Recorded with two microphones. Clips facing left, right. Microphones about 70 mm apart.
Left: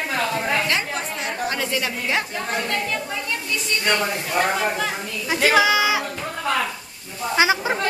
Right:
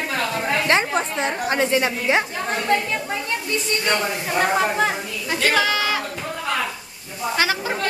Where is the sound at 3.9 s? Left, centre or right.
Right.